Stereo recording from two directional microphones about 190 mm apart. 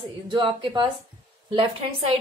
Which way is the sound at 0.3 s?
25° right (ahead or behind).